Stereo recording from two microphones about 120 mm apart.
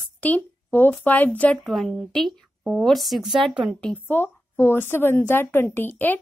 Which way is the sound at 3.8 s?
10° left (ahead or behind).